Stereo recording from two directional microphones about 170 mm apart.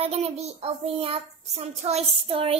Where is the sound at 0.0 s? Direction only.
35° right (ahead or behind).